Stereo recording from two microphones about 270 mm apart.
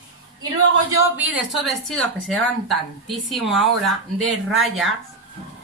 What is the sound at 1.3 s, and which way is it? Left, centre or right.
Speech, centre.